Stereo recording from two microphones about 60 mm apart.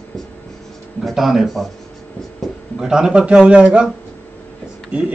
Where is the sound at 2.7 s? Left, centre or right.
Centre.